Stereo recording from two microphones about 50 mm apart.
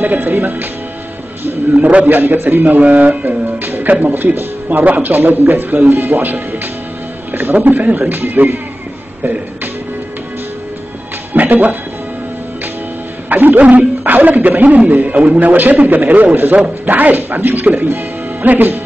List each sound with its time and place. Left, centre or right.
0.0 s a man's voice: right
1.8 s a man's voice: right
7.5 s a man's voice: right
11.3 s speech: right
13.3 s a man's voice: right